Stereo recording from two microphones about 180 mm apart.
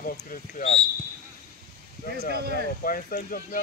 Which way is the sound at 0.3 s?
45° left (ahead or behind).